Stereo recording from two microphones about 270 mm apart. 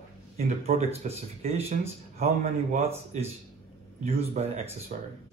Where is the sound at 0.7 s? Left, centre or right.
Right.